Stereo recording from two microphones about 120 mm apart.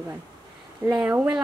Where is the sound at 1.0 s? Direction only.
10° right (ahead or behind).